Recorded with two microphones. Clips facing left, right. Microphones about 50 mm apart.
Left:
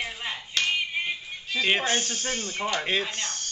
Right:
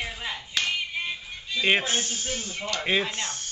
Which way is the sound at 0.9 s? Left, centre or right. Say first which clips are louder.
Left 2 dB; left.